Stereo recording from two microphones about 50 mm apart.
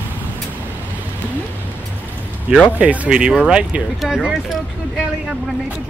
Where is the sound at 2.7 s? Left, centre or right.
Right.